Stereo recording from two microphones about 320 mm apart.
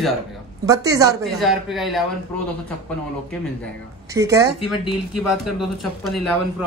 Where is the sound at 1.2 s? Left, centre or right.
Centre.